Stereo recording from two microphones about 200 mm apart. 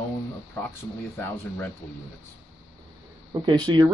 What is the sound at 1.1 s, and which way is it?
Speech, 10° left (ahead or behind).